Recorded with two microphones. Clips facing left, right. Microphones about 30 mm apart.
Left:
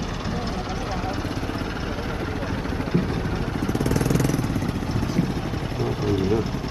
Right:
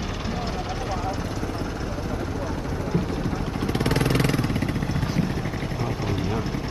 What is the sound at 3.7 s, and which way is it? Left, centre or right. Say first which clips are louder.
Vehicle: right 1 dB; right.